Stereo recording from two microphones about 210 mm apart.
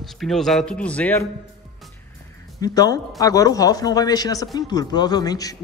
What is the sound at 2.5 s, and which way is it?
A man's voice, 20° left (ahead or behind).